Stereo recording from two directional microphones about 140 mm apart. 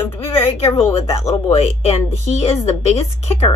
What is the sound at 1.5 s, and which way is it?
Speech, 50° left (ahead or behind).